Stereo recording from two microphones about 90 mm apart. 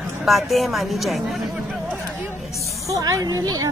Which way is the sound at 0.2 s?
Centre (ahead or behind).